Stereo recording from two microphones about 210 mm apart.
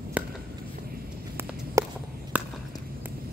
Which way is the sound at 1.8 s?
15° right (ahead or behind).